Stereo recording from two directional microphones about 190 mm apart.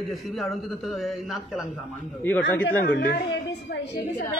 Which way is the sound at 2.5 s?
10° left (ahead or behind).